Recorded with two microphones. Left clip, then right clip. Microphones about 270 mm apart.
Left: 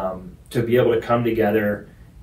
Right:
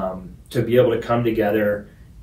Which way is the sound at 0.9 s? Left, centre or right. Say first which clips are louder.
Left 1 dB; centre.